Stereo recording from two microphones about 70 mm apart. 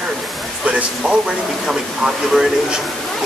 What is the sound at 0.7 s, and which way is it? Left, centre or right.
Speech, centre.